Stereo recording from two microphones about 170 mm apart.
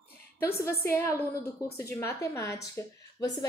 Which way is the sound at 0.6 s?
15° left (ahead or behind).